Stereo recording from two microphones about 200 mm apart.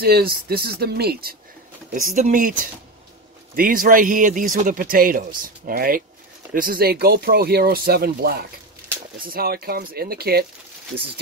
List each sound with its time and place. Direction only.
0.0 s speech: 50° right (ahead or behind)
1.9 s speech: 40° right (ahead or behind)